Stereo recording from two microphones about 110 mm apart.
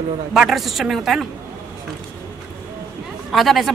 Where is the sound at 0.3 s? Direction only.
Centre (ahead or behind).